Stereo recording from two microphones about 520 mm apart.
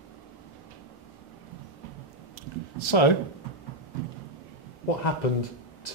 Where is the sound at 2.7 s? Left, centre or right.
Left.